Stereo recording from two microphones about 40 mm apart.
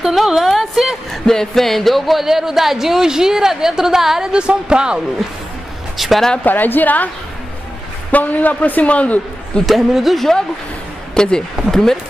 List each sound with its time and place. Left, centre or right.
0.0 s a woman's voice: centre
1.2 s speech: centre
4.3 s speech: right
5.9 s speech: centre
6.4 s a man's voice: left
8.1 s a man's voice: left
8.8 s a woman's voice: left
9.7 s a woman's voice: centre
11.1 s speech: centre